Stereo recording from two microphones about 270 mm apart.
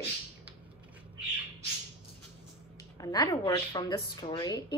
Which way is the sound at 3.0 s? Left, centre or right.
Centre.